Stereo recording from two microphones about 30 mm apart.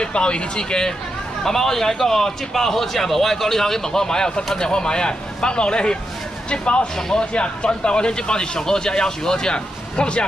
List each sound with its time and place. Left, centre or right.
0.0 s speech: left
1.4 s a man's voice: centre
9.9 s speech: left